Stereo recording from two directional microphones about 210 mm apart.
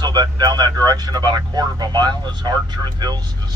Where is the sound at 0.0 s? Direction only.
20° right (ahead or behind).